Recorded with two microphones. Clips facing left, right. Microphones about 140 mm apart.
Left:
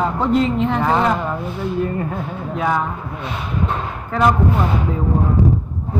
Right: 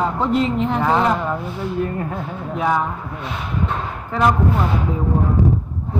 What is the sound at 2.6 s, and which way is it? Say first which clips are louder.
Speech: even; 5° right (ahead or behind).